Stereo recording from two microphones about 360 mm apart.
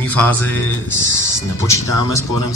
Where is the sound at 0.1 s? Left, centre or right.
Centre.